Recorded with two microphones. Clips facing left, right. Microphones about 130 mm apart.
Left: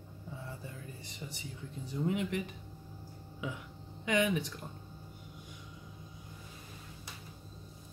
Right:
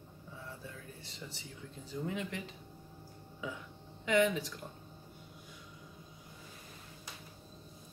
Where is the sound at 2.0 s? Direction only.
20° left (ahead or behind).